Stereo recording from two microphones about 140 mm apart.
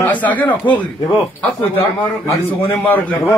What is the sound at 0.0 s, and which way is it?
Speech, 10° left (ahead or behind).